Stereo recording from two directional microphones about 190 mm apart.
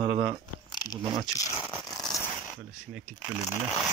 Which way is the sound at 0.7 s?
20° left (ahead or behind).